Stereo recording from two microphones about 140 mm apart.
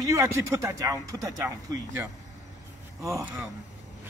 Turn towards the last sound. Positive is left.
turn(degrees=-20)  # may be behind; listen again after turning